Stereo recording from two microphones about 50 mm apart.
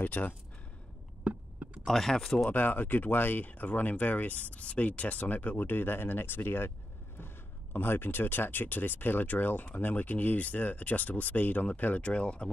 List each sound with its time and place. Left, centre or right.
0.0 s speech: left
1.2 s a sound: right
1.9 s speech: centre
2.5 s speech: left